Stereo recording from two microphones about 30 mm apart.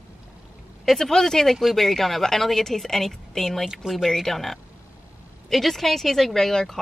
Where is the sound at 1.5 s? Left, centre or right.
Centre.